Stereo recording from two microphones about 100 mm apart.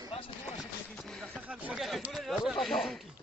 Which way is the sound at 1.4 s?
15° right (ahead or behind).